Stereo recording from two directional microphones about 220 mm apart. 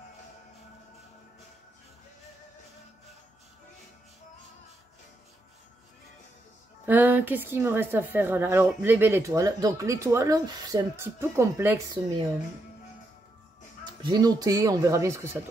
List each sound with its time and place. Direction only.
6.9 s speech: 10° right (ahead or behind)
14.0 s speech: 20° right (ahead or behind)